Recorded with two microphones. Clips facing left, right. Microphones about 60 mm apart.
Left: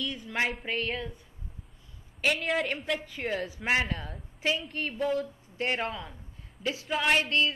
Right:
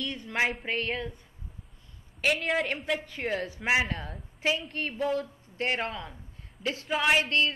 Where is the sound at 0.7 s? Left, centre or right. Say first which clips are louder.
Right 1 dB; centre.